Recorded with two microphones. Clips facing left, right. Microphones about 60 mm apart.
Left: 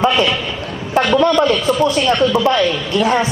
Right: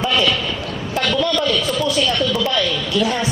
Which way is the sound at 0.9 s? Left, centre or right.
Left.